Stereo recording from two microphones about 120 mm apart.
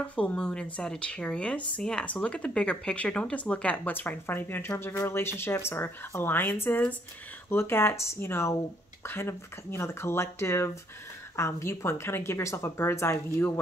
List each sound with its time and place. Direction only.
0.0 s speech: 10° left (ahead or behind)